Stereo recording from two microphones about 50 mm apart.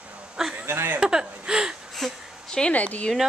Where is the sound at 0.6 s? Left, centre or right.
Right.